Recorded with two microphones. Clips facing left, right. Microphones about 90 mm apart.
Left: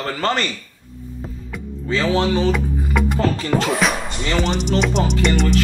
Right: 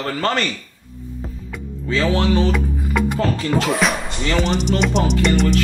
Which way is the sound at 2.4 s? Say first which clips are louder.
Left 1 dB; centre (ahead or behind).